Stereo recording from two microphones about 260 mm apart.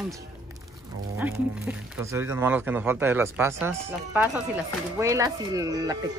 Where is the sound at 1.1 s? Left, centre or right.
Centre.